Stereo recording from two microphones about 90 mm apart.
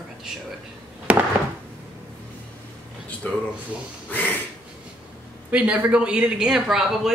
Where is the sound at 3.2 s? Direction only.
15° left (ahead or behind).